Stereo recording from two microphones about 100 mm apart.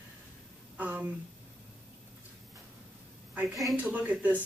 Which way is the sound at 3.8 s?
15° right (ahead or behind).